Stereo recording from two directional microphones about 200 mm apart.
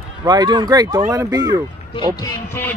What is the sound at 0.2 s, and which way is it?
A man's voice, 20° right (ahead or behind).